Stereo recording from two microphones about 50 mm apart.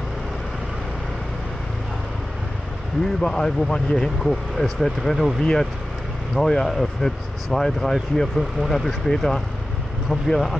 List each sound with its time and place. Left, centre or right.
3.2 s speech: centre
5.4 s speech: centre